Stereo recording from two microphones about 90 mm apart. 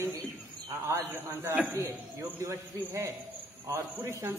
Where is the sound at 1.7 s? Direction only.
35° right (ahead or behind).